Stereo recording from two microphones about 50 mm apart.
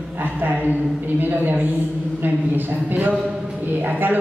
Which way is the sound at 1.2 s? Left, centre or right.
Right.